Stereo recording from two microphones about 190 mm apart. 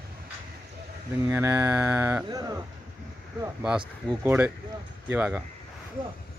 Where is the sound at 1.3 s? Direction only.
10° right (ahead or behind).